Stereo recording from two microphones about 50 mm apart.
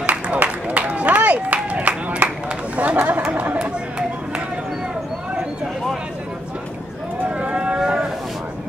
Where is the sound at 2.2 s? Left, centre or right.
Right.